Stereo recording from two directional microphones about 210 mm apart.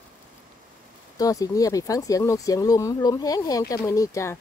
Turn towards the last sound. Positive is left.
turn(degrees=15)  # may be behind; listen again after turning